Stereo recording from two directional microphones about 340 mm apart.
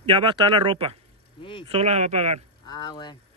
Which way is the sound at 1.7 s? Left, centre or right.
Centre.